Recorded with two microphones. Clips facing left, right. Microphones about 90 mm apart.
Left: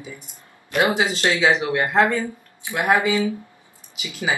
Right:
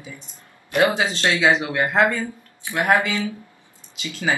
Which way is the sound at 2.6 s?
15° left (ahead or behind).